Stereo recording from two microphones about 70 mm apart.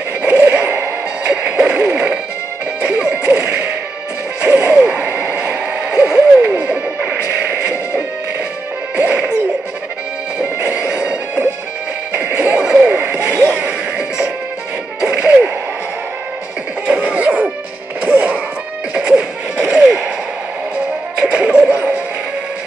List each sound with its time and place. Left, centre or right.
0.2 s a sound: right
2.8 s whip: centre
4.4 s a sound: right
7.1 s music: right
10.4 s music: centre
15.0 s smash: centre
16.8 s neigh: centre
18.0 s music: centre
18.9 s a sound: centre
21.2 s music: centre